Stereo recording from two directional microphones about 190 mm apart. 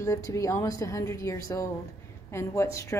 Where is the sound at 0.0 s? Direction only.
15° left (ahead or behind).